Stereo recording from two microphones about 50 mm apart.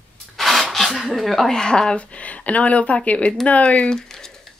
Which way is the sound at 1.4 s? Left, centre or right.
Centre.